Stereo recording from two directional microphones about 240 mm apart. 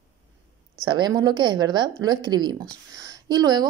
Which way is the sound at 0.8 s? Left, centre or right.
Centre.